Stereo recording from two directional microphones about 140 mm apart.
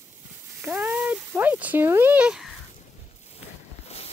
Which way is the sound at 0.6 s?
15° right (ahead or behind).